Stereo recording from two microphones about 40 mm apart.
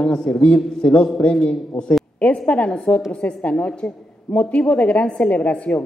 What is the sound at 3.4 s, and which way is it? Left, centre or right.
Speech, left.